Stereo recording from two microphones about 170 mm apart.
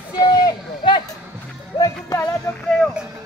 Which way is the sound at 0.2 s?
20° left (ahead or behind).